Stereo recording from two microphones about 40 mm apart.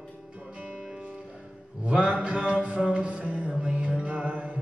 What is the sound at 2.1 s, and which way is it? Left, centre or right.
Music, right.